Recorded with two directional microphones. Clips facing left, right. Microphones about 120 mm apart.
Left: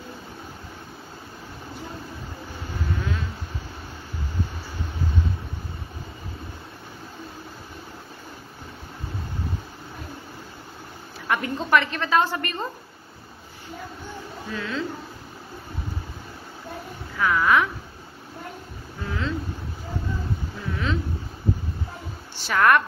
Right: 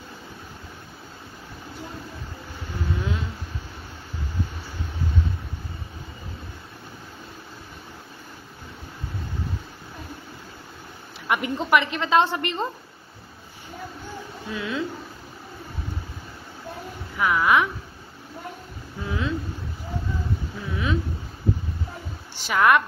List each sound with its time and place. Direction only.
3.0 s vehicle: 25° right (ahead or behind)
11.2 s a woman's voice: 15° right (ahead or behind)
14.5 s a woman's voice: 20° right (ahead or behind)
17.2 s a sound: 15° right (ahead or behind)
19.0 s boat: 20° right (ahead or behind)
20.5 s a sound: 5° right (ahead or behind)
22.4 s a woman's voice: 15° right (ahead or behind)